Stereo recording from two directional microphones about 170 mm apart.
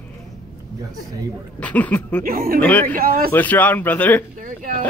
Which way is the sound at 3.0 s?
60° right (ahead or behind).